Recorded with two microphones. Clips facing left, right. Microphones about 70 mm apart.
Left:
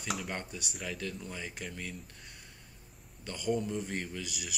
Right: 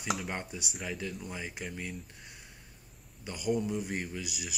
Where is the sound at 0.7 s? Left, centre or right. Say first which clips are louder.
Right 1 dB; centre.